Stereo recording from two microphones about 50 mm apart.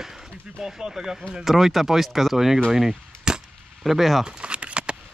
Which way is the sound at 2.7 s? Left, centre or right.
Centre.